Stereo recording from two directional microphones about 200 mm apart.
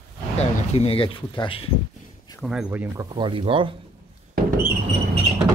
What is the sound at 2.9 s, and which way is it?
Speech, 25° right (ahead or behind).